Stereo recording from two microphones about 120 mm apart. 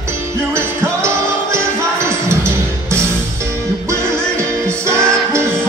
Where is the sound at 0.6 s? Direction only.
20° right (ahead or behind).